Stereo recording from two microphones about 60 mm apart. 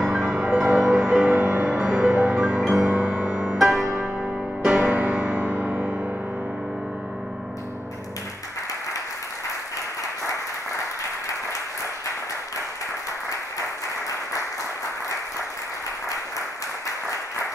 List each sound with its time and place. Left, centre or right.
0.0 s music: centre